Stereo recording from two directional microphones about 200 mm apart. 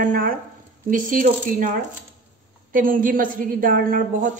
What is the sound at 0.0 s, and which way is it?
A woman's voice, 40° right (ahead or behind).